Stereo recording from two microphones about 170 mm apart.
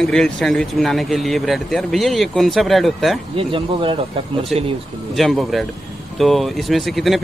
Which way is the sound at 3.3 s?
30° right (ahead or behind).